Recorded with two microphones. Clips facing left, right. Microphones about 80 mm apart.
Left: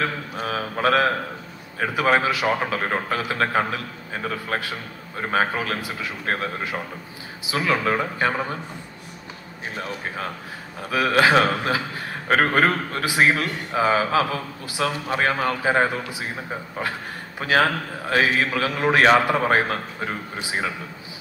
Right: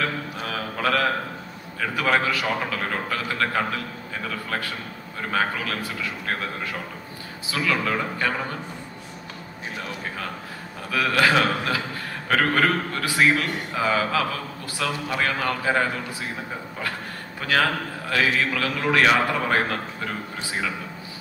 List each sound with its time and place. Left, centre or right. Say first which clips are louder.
0.4 s a sound: left 5 dB; left
1.8 s a man's voice: left 3 dB; left
7.5 s a man's voice: left 3 dB; left
10.9 s a man's voice: left 3 dB; left
12.9 s a man's voice: left 2 dB; centre
13.3 s a man's voice: left 1 dB; left
17.4 s a man's voice: left 2 dB; left